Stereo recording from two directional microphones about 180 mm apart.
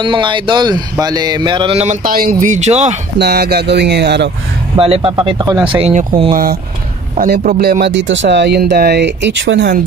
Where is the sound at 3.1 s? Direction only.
65° right (ahead or behind).